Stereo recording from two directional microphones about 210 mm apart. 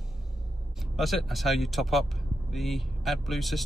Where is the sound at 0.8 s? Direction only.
Centre (ahead or behind).